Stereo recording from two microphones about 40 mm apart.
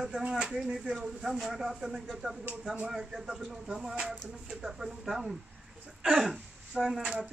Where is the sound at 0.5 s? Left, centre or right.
Centre.